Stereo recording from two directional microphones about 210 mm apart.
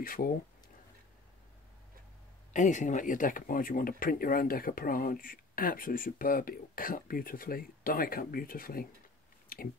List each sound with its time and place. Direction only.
0.0 s speech: 45° left (ahead or behind)
2.5 s speech: 35° left (ahead or behind)
9.5 s a sound: 45° left (ahead or behind)